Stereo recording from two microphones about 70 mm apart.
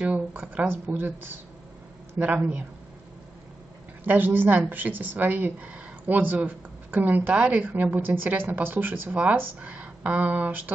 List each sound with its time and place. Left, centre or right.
0.0 s a woman's voice: centre
4.0 s a woman's voice: right